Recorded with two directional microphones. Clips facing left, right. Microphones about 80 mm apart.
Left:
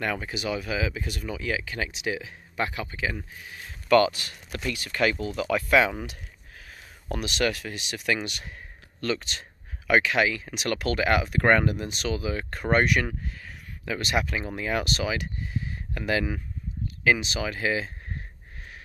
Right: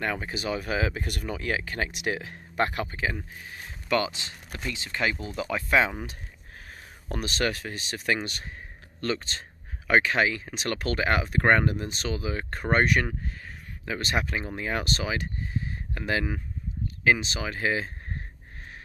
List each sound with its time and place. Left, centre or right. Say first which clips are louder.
0.0 s speech: left 1 dB; right
3.4 s a sound: right 1 dB; right
3.9 s speech: left 7 dB; right
6.7 s speech: left 2 dB; right